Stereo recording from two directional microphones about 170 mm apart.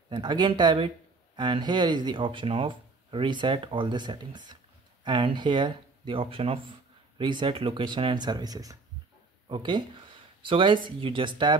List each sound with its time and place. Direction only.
0.1 s speech: 25° right (ahead or behind)